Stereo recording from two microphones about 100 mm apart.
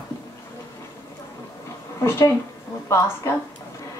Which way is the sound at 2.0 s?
25° left (ahead or behind).